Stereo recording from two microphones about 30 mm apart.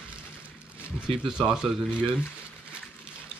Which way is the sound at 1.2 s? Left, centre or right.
Centre.